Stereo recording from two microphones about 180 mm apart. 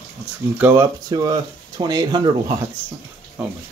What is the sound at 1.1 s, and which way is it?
Speech, 20° right (ahead or behind).